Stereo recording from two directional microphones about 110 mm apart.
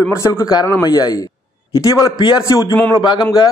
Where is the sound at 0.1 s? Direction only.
25° left (ahead or behind).